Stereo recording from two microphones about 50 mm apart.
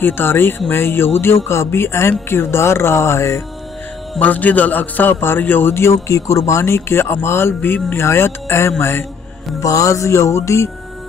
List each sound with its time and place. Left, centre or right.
0.0 s speech: left
4.2 s a man's voice: left
9.6 s music: left